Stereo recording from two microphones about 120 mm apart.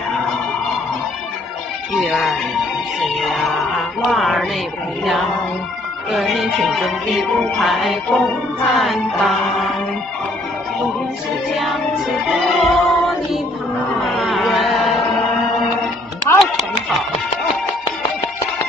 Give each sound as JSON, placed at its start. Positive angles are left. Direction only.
{"t": 2.0, "sound": "speech", "side_deg": 0}
{"t": 6.1, "sound": "music", "side_deg": 0}
{"t": 11.5, "sound": "music", "side_deg": 0}
{"t": 14.0, "sound": "a sound", "side_deg": 0}
{"t": 16.3, "sound": "music", "side_deg": 20}